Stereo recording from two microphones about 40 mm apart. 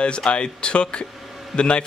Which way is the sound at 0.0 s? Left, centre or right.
Left.